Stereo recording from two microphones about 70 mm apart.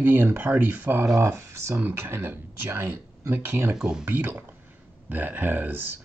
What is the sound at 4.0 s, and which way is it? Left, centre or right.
Speech, right.